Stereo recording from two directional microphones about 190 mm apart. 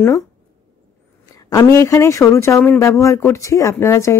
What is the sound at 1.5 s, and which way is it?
A woman's voice, 15° left (ahead or behind).